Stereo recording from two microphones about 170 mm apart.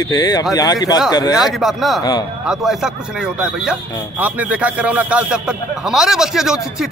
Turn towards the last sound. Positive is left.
turn(degrees=0)  # may be behind; listen again after turning